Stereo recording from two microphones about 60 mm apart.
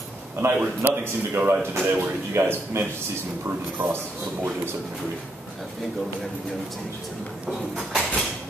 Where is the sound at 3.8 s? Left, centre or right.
Right.